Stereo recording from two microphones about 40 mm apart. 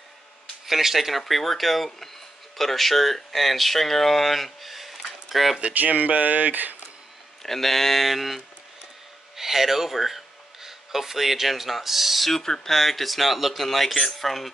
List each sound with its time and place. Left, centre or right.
0.7 s speech: centre
5.6 s speech: right
7.4 s speech: centre
9.4 s speech: centre
12.3 s speech: centre